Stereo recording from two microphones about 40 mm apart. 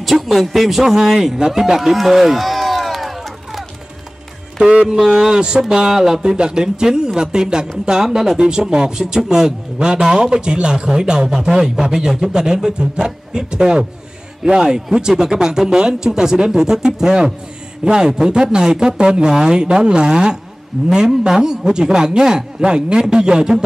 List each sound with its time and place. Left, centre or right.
0.0 s a man's voice: centre
1.0 s a sound: centre
5.1 s a man's voice: centre